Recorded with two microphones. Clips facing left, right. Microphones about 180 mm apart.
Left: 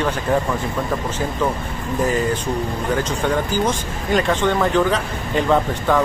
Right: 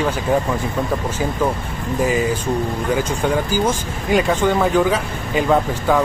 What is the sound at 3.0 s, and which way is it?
Speech, 10° right (ahead or behind).